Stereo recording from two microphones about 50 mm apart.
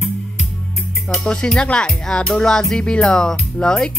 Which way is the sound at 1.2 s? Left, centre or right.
Centre.